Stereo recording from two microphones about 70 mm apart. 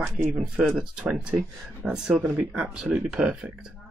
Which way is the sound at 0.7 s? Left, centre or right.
Centre.